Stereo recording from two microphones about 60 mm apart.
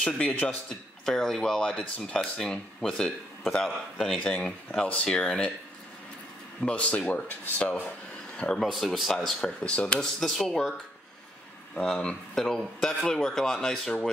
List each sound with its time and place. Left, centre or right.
0.0 s speech: left
0.7 s speech: centre
4.2 s speech: left
6.6 s speech: left
8.5 s speech: centre
9.4 s speech: centre
9.9 s speech: centre
11.7 s speech: centre